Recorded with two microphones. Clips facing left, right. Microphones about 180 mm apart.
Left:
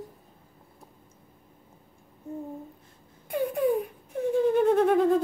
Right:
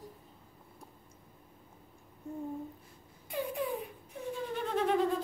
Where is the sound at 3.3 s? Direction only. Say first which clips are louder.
Left 10 dB; 50° left (ahead or behind).